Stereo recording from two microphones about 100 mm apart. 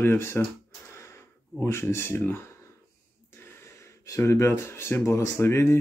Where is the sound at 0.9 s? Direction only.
25° left (ahead or behind).